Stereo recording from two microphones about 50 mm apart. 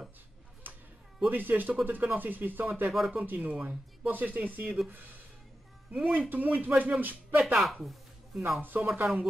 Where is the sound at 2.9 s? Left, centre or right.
Centre.